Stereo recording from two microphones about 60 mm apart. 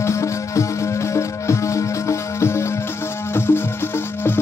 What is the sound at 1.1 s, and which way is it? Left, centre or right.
Music, left.